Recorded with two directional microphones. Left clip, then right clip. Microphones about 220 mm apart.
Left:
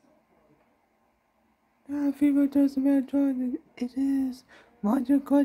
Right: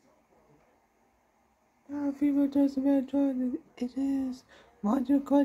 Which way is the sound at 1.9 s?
45° left (ahead or behind).